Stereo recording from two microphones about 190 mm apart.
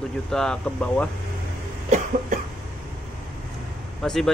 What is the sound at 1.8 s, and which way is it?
Cough, 40° right (ahead or behind).